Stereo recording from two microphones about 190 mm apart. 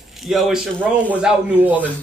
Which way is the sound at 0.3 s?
5° right (ahead or behind).